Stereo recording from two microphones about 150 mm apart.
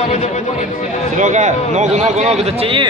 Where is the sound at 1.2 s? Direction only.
55° right (ahead or behind); by 2.8 s 40° right (ahead or behind).